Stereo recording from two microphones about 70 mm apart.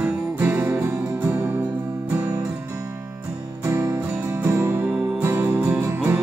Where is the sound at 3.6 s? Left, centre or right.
Right.